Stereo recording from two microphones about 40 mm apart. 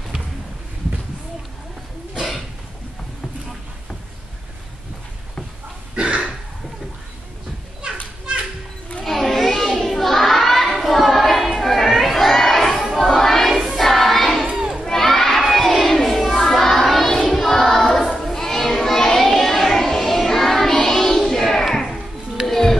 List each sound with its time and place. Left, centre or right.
5.9 s a sound: right
7.8 s children playing: right
9.0 s a sound: centre
13.6 s choir: centre
13.8 s child singing: centre
14.9 s crowd: centre
15.8 s a sound: centre
16.4 s child singing: centre
18.2 s children playing: centre
22.5 s music: centre